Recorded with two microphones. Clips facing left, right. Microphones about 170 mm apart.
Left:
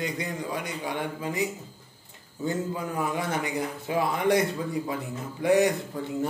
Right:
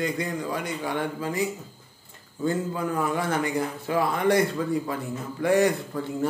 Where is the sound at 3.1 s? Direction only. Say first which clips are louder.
Right 3 dB; 15° left (ahead or behind).